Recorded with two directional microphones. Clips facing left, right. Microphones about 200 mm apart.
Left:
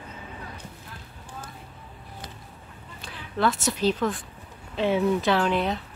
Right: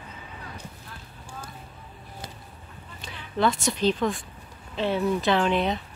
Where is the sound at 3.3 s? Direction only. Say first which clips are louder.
Right 1 dB; 5° left (ahead or behind).